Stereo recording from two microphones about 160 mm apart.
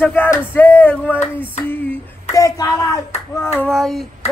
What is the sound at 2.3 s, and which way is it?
Speech, 20° left (ahead or behind).